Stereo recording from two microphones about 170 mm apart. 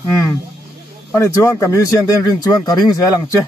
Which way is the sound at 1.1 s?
15° left (ahead or behind).